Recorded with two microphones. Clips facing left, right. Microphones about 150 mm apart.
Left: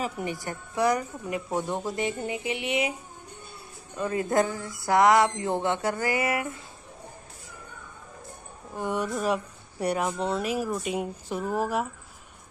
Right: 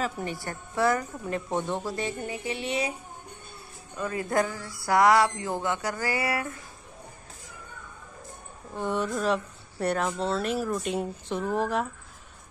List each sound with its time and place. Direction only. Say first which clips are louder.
0.2 s speech: left 1 dB; 15° left (ahead or behind)
3.9 s speech: left 2 dB; 20° left (ahead or behind)
8.7 s speech: even; 10° left (ahead or behind)